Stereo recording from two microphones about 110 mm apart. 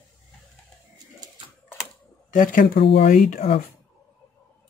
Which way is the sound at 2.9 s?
65° left (ahead or behind).